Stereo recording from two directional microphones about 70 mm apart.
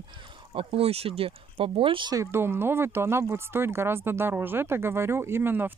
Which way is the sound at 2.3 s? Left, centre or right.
Right.